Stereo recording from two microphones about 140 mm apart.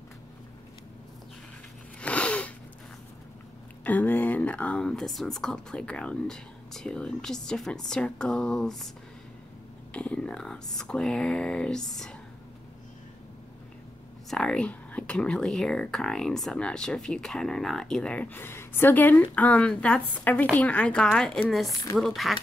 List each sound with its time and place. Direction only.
2.0 s a sound: 10° left (ahead or behind)
3.8 s speech: 10° left (ahead or behind)
9.9 s speech: 10° left (ahead or behind)
14.3 s speech: 5° left (ahead or behind)